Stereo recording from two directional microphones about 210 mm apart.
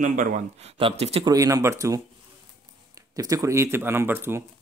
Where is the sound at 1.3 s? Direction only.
15° right (ahead or behind).